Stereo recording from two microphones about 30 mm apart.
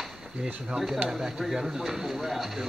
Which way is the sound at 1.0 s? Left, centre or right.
Centre.